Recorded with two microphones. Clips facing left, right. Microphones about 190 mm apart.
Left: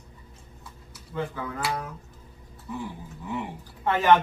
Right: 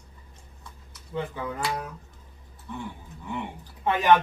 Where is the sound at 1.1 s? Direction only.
20° right (ahead or behind).